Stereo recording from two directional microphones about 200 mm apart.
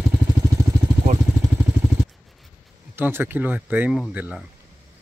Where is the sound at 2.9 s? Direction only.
10° right (ahead or behind).